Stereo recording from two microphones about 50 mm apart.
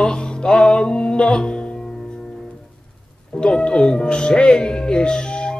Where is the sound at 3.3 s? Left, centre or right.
Centre.